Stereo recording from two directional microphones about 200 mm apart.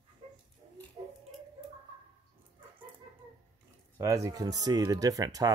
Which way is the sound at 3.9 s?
15° right (ahead or behind).